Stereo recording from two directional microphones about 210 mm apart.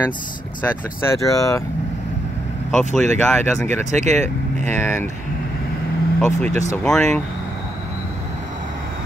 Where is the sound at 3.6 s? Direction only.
35° right (ahead or behind).